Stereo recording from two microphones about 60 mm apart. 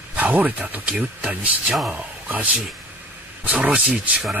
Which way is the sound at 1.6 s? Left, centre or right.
Centre.